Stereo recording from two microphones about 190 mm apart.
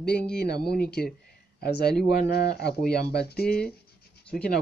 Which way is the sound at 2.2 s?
60° left (ahead or behind).